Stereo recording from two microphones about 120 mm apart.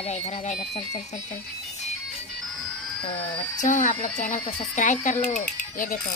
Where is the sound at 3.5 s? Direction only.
90° left.